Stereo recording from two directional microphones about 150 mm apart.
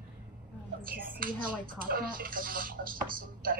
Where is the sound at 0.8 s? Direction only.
70° right (ahead or behind).